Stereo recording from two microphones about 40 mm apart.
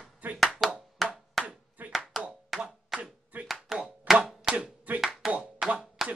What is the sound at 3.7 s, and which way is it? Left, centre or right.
Music, centre.